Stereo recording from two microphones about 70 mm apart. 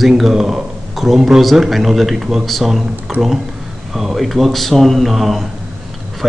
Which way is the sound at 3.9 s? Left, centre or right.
Centre.